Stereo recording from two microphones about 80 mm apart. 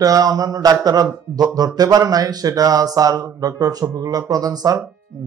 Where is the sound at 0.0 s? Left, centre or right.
Right.